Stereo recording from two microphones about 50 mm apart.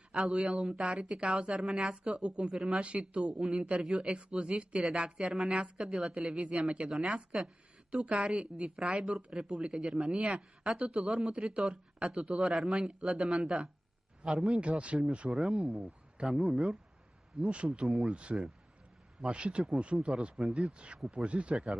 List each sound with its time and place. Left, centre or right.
0.4 s a man's voice: centre
2.1 s a man's voice: centre
7.9 s a woman's voice: right
8.3 s a man's voice: centre; by 15.0 s right
15.2 s speech: centre
15.5 s a woman's voice: centre
20.7 s a woman's voice: centre